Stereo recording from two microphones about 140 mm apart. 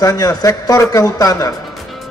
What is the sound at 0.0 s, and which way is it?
Speech, 25° left (ahead or behind).